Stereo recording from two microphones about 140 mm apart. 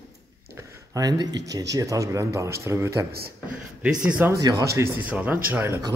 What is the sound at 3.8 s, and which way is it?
Speech, 10° right (ahead or behind).